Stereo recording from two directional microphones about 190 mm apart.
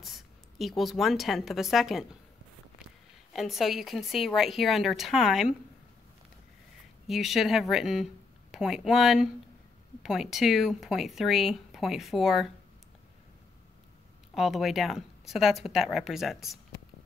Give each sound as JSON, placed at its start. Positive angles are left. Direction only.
{"t": 0.0, "sound": "a woman's voice", "side_deg": 0}
{"t": 3.3, "sound": "speech", "side_deg": 0}
{"t": 7.1, "sound": "speech", "side_deg": 0}
{"t": 14.3, "sound": "speech", "side_deg": 0}